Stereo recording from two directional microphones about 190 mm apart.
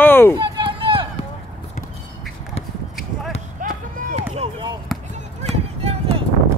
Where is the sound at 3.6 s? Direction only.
45° right (ahead or behind).